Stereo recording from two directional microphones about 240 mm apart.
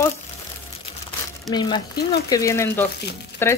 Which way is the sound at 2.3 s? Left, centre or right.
Centre.